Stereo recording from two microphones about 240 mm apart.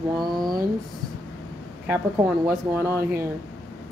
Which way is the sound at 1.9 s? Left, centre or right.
Centre.